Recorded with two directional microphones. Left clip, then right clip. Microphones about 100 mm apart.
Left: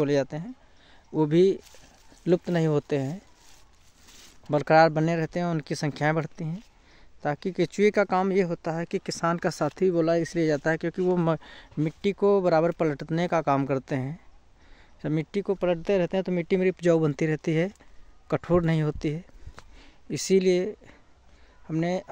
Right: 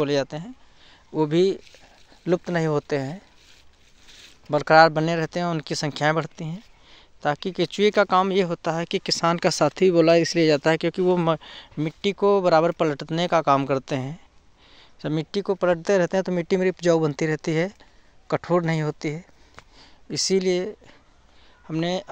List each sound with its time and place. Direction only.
0.0 s speech: 30° left (ahead or behind)
0.8 s speech: 45° left (ahead or behind)
4.5 s speech: 45° left (ahead or behind); by 11.1 s centre (ahead or behind)
11.1 s speech: 30° left (ahead or behind); by 16.5 s 5° left (ahead or behind)
16.7 s speech: 35° left (ahead or behind)
18.3 s speech: 45° left (ahead or behind)
19.8 s speech: 40° left (ahead or behind)
21.6 s speech: 20° left (ahead or behind)